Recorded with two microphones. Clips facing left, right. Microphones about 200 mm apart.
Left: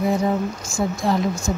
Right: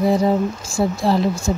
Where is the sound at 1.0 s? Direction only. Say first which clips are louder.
Right 3 dB; 30° right (ahead or behind).